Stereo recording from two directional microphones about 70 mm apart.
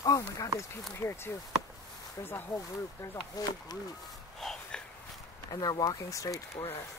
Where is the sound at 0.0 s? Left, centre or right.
Left.